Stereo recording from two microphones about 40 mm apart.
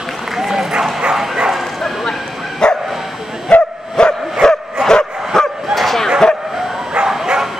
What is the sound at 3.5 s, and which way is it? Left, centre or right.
Dog, left.